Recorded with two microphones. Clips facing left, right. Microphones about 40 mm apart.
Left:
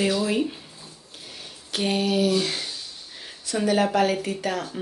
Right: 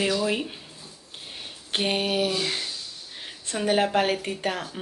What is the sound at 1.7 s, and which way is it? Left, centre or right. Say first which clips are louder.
Speech: left 1 dB; right.